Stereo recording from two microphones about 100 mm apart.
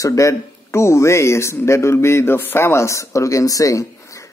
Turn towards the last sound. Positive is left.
turn(degrees=30)  # may be behind; listen again after turning